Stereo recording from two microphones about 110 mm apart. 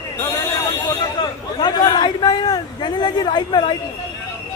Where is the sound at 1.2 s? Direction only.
40° left (ahead or behind).